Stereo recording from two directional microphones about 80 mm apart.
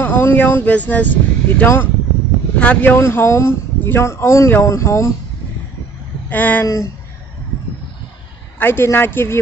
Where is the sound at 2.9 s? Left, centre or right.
Left.